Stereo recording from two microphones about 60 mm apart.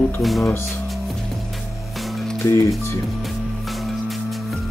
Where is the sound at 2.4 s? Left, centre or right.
Left.